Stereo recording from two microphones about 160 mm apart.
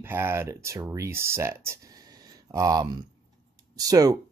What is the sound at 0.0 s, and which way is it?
Speech, 15° right (ahead or behind).